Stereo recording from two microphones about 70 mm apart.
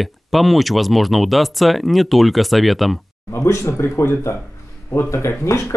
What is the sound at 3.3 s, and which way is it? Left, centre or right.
Speech, left.